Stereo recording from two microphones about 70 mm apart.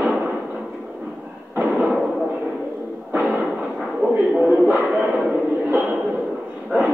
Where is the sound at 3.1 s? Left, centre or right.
Right.